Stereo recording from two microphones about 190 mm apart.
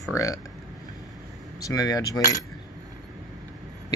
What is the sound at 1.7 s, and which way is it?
Speech, 20° left (ahead or behind).